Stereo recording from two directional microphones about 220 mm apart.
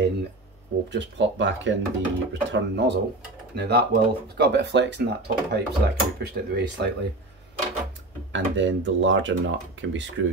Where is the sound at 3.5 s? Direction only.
45° right (ahead or behind).